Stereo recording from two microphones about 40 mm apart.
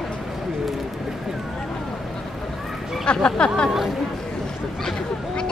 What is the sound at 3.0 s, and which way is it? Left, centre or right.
Speech, left.